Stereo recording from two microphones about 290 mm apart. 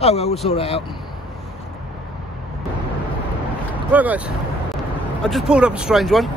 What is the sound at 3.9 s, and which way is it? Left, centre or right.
Speech, centre.